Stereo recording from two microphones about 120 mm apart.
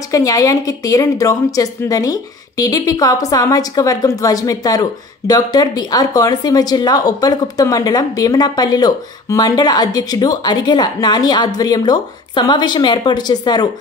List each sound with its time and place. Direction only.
0.1 s a woman's voice: 30° left (ahead or behind)